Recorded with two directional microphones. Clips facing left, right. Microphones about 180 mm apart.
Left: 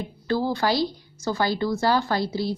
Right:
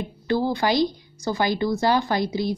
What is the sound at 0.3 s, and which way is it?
A woman's voice, 15° right (ahead or behind).